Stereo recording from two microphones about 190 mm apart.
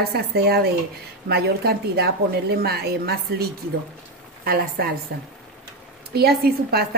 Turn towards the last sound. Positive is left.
turn(degrees=-55)  # may be behind; listen again after turning